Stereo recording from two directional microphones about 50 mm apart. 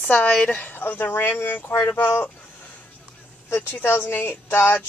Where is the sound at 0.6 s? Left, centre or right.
Left.